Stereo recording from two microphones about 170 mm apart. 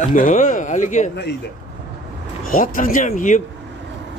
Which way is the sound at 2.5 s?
55° left (ahead or behind).